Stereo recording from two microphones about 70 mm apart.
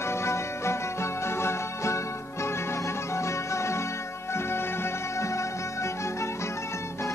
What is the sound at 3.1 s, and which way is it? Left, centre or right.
Music, left.